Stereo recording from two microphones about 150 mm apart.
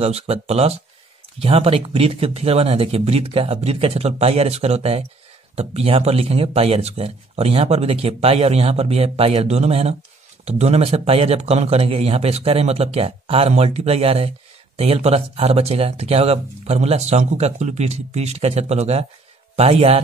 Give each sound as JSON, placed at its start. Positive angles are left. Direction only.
{"t": 0.0, "sound": "speech", "side_deg": -45}